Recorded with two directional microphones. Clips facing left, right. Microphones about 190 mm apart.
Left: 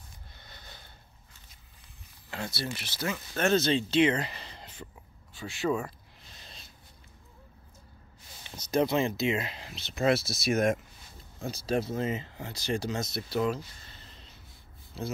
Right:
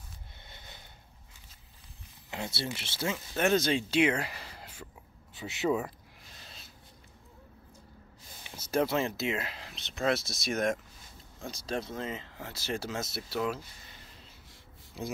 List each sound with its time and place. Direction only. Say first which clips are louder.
0.4 s a sound: left 1 dB; 25° right (ahead or behind)
2.3 s speech: left 1 dB; 20° right (ahead or behind)
5.3 s speech: even; 20° right (ahead or behind)
8.5 s speech: left 2 dB; 5° right (ahead or behind)
13.8 s a sound: even; 10° right (ahead or behind)
15.0 s speech: left 2 dB; 15° right (ahead or behind)